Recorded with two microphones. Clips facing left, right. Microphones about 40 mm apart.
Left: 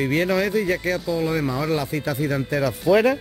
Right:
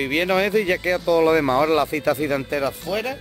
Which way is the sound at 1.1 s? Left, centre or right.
Right.